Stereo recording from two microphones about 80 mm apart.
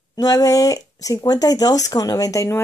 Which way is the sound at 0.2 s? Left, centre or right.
Left.